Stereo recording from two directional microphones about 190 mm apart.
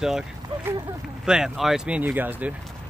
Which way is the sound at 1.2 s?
5° right (ahead or behind).